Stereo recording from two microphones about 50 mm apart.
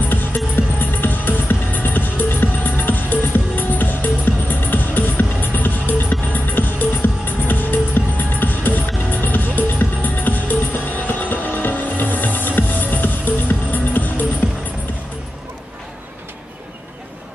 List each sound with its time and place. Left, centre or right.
0.1 s music: left